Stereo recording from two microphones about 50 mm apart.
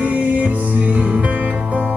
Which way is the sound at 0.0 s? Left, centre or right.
Right.